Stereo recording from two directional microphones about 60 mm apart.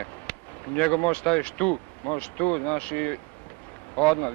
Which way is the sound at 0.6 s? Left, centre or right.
Left.